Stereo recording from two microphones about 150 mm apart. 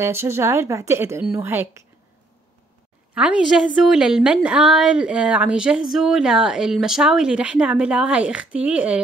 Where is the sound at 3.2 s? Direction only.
5° right (ahead or behind).